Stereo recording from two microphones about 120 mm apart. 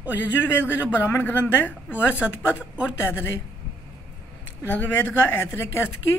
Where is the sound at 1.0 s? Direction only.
15° left (ahead or behind).